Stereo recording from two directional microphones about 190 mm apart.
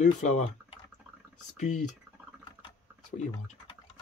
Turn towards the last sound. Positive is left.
turn(degrees=40)  # may be behind; listen again after turning